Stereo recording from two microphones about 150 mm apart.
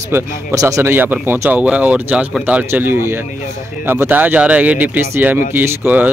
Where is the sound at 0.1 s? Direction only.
20° right (ahead or behind).